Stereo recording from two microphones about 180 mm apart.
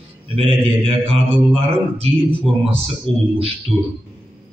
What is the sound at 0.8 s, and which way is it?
Speech, 30° right (ahead or behind).